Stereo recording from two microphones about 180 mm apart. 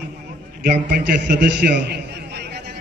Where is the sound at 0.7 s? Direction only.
65° right (ahead or behind).